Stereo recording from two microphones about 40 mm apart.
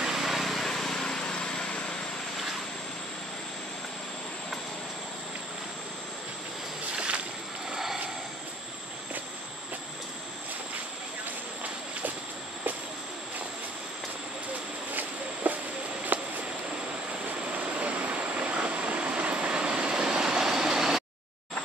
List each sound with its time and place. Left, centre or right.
0.0 s vehicle: centre; by 2.0 s left
7.7 s vehicle: centre
14.9 s a sound: right
17.4 s vehicle: right; by 21.0 s centre